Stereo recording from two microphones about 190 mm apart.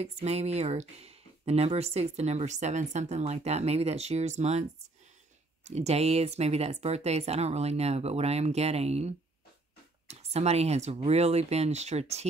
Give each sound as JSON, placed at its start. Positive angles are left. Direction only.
{"t": 0.0, "sound": "speech", "side_deg": -35}
{"t": 5.7, "sound": "speech", "side_deg": -35}